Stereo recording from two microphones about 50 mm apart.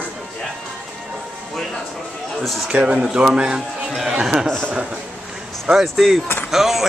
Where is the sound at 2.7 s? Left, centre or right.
Right.